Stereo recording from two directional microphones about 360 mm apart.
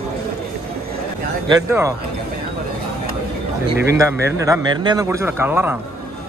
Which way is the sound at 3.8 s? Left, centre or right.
Centre.